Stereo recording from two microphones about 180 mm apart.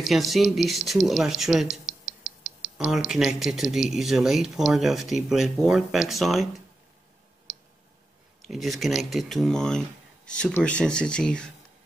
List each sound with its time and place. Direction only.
0.0 s speech: centre (ahead or behind)
1.9 s a sound: 50° right (ahead or behind)
2.8 s speech: centre (ahead or behind)
8.4 s speech: centre (ahead or behind)